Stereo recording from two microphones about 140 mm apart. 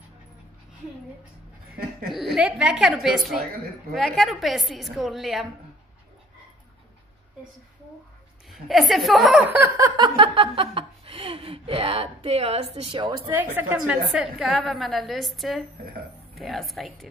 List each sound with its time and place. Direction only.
2.1 s a woman's voice: 5° right (ahead or behind)
8.5 s a woman's voice: centre (ahead or behind)
9.5 s speech: 20° right (ahead or behind); by 13.3 s 40° right (ahead or behind)
13.3 s a woman's voice: 15° right (ahead or behind)